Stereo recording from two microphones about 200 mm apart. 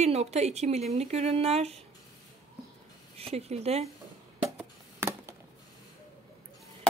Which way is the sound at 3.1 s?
30° right (ahead or behind).